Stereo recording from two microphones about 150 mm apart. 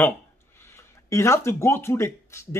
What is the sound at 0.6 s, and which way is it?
Speech, 20° left (ahead or behind).